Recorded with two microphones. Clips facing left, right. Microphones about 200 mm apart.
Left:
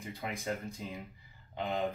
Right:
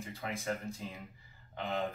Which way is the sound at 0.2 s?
15° left (ahead or behind).